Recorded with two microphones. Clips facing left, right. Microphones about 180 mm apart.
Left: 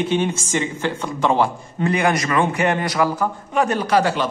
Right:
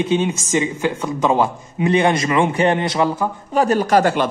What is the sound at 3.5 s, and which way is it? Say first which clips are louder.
Speech: right 4 dB; 35° right (ahead or behind).